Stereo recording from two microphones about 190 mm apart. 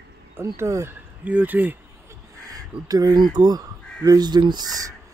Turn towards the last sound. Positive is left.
turn(degrees=-20)  # may be behind; listen again after turning